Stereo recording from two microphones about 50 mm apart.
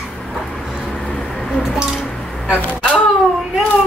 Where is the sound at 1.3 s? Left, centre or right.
Centre.